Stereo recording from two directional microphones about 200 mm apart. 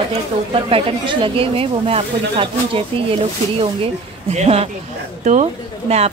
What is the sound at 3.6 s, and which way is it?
A woman's voice, 30° right (ahead or behind).